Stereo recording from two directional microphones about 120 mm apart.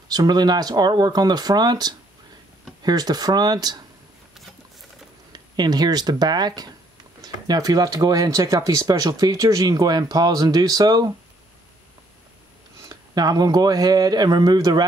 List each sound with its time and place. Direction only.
0.1 s speech: 35° right (ahead or behind)
5.3 s speech: 35° right (ahead or behind)
12.8 s speech: 35° right (ahead or behind)